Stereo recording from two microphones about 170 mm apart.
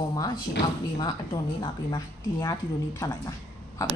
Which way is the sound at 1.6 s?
20° left (ahead or behind).